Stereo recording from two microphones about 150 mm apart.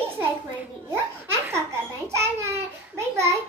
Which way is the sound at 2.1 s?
20° right (ahead or behind).